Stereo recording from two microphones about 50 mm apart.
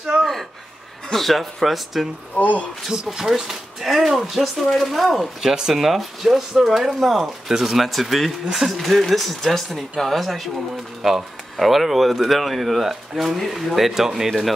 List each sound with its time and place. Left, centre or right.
0.2 s a sound: centre
1.1 s speech: centre
2.3 s speech: left
3.1 s speech: centre